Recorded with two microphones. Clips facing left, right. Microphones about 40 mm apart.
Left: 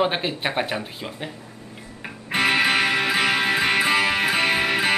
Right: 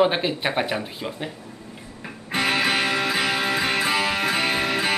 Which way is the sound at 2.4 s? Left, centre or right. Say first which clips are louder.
Left 2 dB; left.